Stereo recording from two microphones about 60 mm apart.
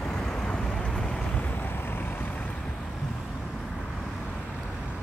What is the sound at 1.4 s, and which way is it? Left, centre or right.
Vehicle, left.